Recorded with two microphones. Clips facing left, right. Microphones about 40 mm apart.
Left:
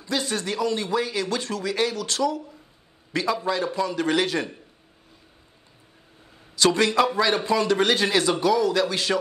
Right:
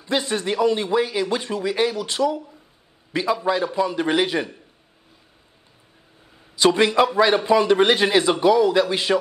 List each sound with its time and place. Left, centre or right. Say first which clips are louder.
0.0 s a man's voice: right 4 dB; right
6.5 s a man's voice: right 3 dB; centre